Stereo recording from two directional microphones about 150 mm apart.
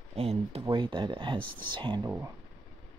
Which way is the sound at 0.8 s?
30° right (ahead or behind).